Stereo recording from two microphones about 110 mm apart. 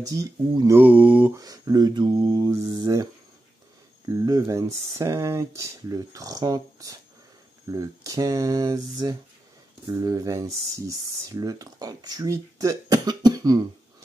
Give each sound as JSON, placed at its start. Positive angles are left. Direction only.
{"t": 0.0, "sound": "speech", "side_deg": -30}
{"t": 0.7, "sound": "mantra", "side_deg": -15}
{"t": 1.3, "sound": "speech", "side_deg": -35}
{"t": 4.1, "sound": "speech", "side_deg": -30}